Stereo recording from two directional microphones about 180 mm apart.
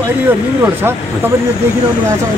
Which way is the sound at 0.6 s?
10° right (ahead or behind).